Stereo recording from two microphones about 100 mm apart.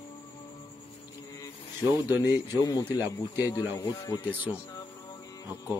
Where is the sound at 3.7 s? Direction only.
40° left (ahead or behind).